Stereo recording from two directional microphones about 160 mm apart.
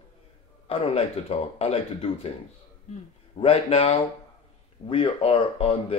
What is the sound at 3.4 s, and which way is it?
A man's voice, 35° left (ahead or behind).